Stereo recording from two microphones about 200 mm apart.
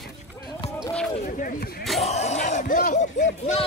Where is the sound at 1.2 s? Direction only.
45° left (ahead or behind).